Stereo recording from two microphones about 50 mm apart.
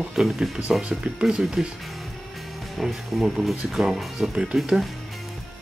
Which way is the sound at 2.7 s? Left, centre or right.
Centre.